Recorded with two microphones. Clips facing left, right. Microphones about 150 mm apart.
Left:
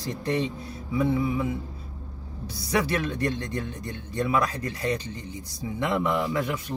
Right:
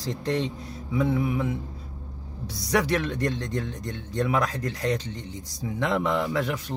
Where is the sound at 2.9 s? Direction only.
90° right.